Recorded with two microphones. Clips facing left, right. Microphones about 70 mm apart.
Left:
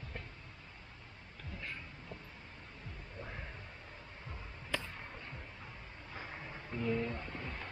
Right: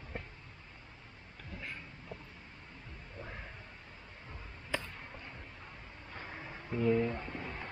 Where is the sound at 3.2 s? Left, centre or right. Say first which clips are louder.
Right 1 dB; centre.